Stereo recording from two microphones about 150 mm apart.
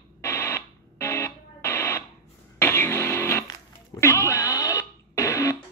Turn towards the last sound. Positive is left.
turn(degrees=20)  # may be behind; listen again after turning